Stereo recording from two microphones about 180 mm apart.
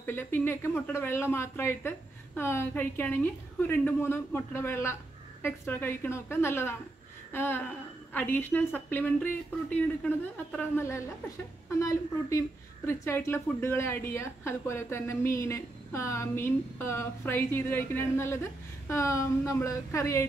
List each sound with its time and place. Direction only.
0.0 s a woman's voice: 10° left (ahead or behind)